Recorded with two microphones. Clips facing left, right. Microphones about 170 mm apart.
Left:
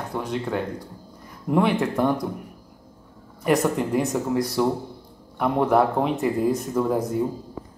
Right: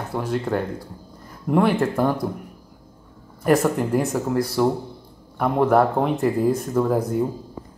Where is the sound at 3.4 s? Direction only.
Centre (ahead or behind).